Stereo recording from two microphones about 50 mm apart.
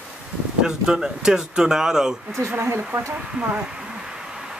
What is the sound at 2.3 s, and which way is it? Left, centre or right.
Speech, right.